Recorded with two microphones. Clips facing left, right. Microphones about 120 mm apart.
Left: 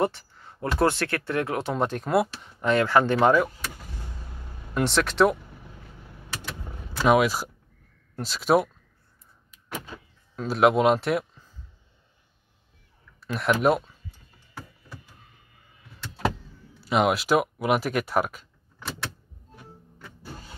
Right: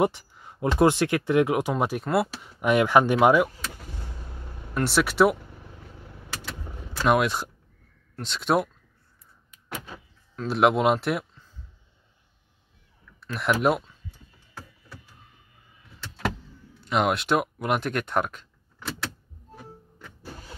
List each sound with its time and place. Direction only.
0.0 s a sound: 15° right (ahead or behind)
0.7 s speech: 15° right (ahead or behind)
2.6 s speech: 15° right (ahead or behind)
4.8 s speech: 5° right (ahead or behind)
7.0 s speech: centre (ahead or behind)
10.4 s speech: centre (ahead or behind)
13.2 s speech: centre (ahead or behind)
16.8 s speech: 5° left (ahead or behind)